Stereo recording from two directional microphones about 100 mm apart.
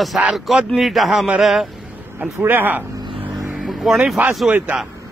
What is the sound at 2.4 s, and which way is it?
Speech, 20° right (ahead or behind).